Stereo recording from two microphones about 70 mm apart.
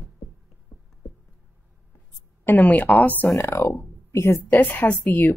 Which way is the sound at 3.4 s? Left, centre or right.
Left.